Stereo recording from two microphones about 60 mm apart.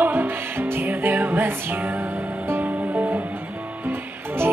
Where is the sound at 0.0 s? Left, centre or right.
Right.